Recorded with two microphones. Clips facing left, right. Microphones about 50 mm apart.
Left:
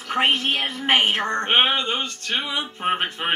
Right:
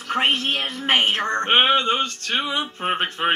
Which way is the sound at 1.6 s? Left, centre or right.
Right.